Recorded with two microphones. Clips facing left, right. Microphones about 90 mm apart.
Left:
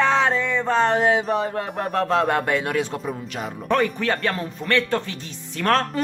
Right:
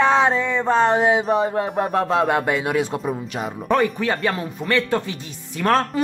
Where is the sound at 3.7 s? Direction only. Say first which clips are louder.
Right 2 dB; 5° right (ahead or behind).